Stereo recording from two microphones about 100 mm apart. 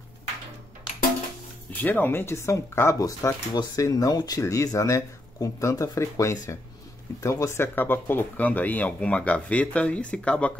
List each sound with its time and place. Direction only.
1.7 s speech: 15° left (ahead or behind)